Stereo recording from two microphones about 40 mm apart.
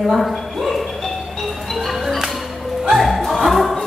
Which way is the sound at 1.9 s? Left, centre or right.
Centre.